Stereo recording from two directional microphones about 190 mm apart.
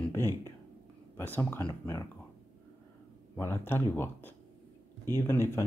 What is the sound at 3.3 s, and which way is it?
Speech, 15° left (ahead or behind).